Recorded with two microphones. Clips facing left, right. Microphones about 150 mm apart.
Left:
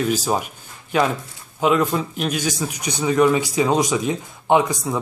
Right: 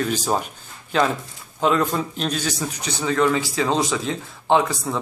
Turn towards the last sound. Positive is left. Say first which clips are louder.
# left 2 dB
turn(degrees=15)  # may be behind; listen again after turning